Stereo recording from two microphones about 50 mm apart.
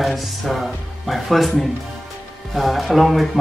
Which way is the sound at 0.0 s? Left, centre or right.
Centre.